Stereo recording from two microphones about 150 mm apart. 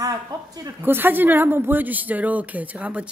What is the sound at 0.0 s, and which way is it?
Speech, 25° right (ahead or behind).